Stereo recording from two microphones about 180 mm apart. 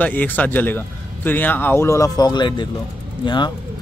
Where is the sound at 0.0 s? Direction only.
10° left (ahead or behind).